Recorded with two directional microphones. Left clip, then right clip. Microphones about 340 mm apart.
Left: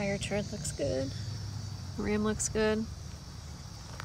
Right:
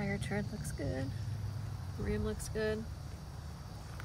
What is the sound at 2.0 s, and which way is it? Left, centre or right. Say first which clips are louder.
Speech: left 7 dB; centre.